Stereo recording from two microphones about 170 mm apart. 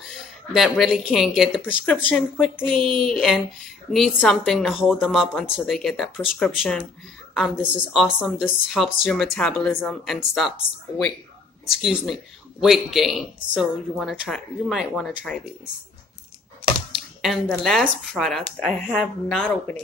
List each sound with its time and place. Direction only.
0.0 s speech: centre (ahead or behind)
11.6 s speech: centre (ahead or behind)
16.9 s speech: centre (ahead or behind)